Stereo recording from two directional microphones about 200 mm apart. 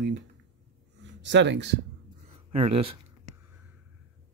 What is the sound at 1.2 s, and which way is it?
Speech, 65° right (ahead or behind).